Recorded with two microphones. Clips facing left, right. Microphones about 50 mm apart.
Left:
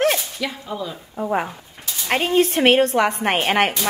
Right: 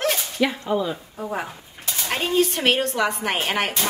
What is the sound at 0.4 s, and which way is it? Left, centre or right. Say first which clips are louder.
Speech: right 5 dB; right.